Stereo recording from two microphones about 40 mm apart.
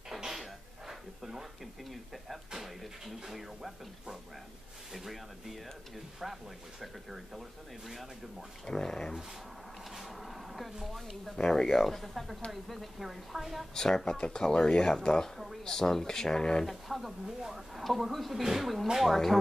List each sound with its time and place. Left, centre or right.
0.2 s throat clearing: centre
2.6 s speech: centre
8.6 s speech: centre
9.9 s a sound: centre
11.3 s speech: centre
13.7 s speech: centre
15.3 s speech: centre
15.6 s speech: centre
16.6 s speech: centre
17.4 s speech: centre
17.8 s speech: centre